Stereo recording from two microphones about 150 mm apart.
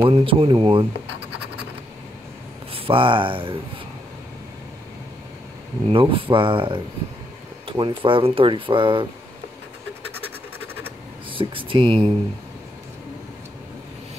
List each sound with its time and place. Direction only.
0.0 s speech: 35° right (ahead or behind)
2.7 s speech: 35° right (ahead or behind)
5.9 s speech: 35° right (ahead or behind)
11.2 s speech: 35° right (ahead or behind)